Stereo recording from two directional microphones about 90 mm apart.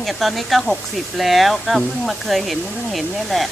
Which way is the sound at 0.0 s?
Centre (ahead or behind).